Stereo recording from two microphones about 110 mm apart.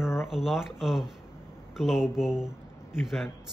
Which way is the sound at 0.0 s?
25° left (ahead or behind).